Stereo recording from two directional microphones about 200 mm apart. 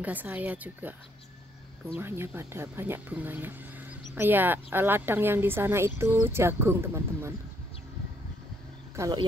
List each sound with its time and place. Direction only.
0.0 s speech: 10° right (ahead or behind)
2.0 s speech: 10° right (ahead or behind)
8.9 s speech: 15° right (ahead or behind)